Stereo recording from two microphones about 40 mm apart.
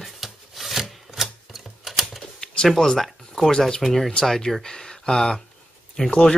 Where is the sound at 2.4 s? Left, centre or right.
Left.